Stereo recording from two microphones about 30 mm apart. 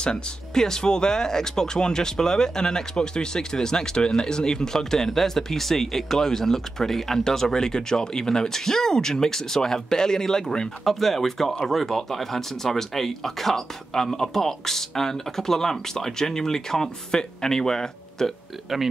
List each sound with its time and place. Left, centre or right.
0.0 s speech: left
10.8 s speech: centre